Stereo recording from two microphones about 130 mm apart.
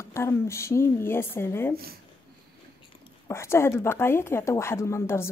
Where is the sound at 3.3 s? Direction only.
20° left (ahead or behind).